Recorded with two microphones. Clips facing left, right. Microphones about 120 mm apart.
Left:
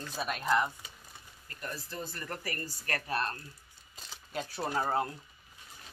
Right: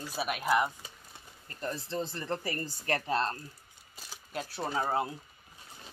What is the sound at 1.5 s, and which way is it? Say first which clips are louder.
Speech: right 6 dB; 30° right (ahead or behind).